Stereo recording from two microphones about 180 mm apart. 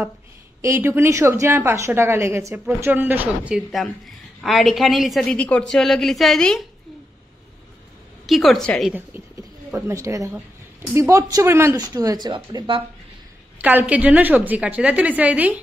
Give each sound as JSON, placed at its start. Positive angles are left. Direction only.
{"t": 0.6, "sound": "a woman's voice", "side_deg": -15}
{"t": 8.3, "sound": "a woman's voice", "side_deg": 0}
{"t": 9.8, "sound": "a woman's voice", "side_deg": -15}
{"t": 13.6, "sound": "a woman's voice", "side_deg": -10}